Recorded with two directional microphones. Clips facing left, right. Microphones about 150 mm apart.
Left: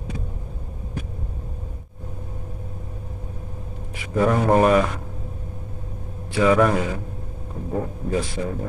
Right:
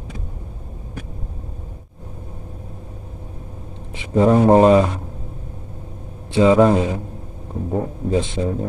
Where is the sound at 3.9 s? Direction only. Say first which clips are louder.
Right 5 dB; 25° right (ahead or behind).